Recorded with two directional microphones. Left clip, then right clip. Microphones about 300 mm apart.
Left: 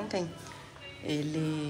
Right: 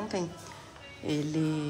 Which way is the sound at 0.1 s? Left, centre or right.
Centre.